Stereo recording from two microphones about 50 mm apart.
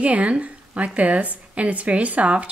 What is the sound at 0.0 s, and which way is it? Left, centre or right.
A woman's voice, right.